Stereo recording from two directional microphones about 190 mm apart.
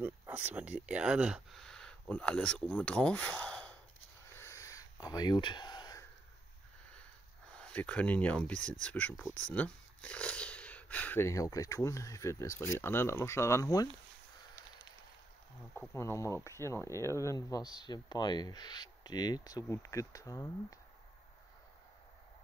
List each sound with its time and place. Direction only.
0.0 s speech: 10° right (ahead or behind); by 3.7 s 5° left (ahead or behind)
4.4 s a sound: 15° left (ahead or behind)
6.9 s speech: 5° left (ahead or behind)
15.9 s speech: 15° left (ahead or behind)